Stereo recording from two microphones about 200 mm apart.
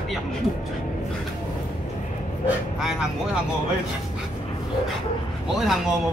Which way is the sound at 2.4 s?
5° right (ahead or behind).